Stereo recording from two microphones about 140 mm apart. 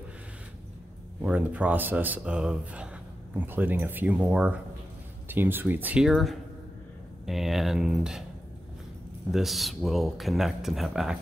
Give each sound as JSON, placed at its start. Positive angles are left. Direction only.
{"t": 1.2, "sound": "speech", "side_deg": -10}
{"t": 6.0, "sound": "speech", "side_deg": 0}
{"t": 9.3, "sound": "speech", "side_deg": 0}